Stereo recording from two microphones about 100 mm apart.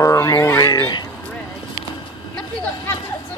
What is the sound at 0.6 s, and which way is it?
Speech, 45° left (ahead or behind).